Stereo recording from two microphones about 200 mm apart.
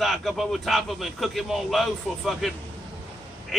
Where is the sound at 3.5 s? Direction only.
Centre (ahead or behind).